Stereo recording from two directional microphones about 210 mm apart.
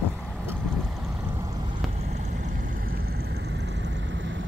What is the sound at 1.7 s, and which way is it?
Vehicle, 35° right (ahead or behind).